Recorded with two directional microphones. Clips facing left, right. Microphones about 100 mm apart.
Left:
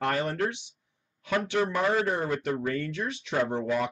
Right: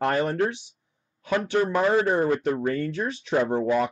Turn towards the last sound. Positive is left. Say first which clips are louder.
# right 5 dB
turn(degrees=-35)  # may be behind; listen again after turning